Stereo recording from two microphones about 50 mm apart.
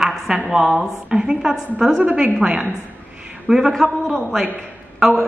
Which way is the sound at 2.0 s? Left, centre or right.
Right.